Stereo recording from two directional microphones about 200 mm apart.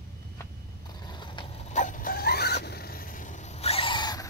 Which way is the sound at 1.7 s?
40° left (ahead or behind).